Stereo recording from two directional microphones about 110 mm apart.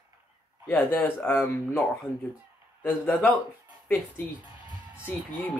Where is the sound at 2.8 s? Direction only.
15° left (ahead or behind).